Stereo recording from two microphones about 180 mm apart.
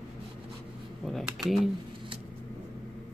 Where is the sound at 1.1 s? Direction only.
Centre (ahead or behind).